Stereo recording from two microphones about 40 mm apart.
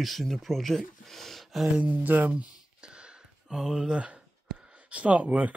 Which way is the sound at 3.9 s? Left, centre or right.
Right.